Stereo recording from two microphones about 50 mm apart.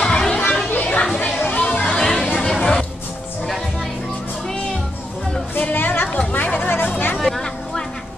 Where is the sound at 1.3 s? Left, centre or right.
Left.